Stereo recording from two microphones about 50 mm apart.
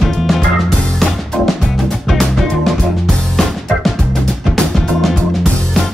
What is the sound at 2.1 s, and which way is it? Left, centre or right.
Music, centre.